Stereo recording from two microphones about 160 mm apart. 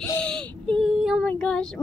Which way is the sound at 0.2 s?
5° left (ahead or behind).